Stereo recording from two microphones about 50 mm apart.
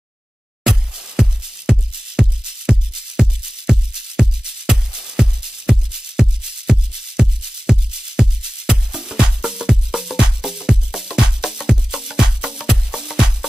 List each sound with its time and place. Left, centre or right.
0.7 s music: centre